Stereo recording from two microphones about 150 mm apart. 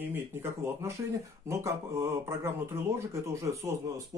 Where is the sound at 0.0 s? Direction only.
15° right (ahead or behind).